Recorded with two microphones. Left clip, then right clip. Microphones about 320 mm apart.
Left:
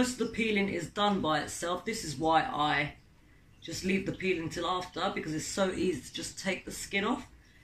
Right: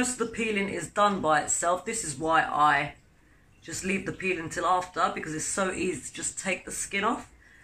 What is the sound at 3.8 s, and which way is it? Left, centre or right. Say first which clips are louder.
Speech: right 2 dB; centre.